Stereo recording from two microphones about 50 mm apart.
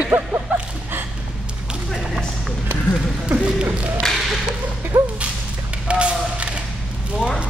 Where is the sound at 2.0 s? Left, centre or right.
Centre.